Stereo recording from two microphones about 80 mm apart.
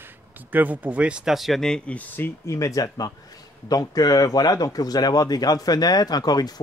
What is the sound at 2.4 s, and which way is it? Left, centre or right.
Speech, left.